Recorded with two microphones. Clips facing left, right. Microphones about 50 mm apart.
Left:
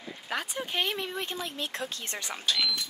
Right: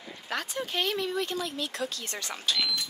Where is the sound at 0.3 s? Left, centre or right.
Centre; by 2.2 s left.